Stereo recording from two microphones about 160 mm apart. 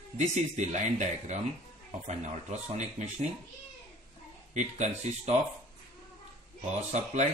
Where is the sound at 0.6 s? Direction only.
45° right (ahead or behind).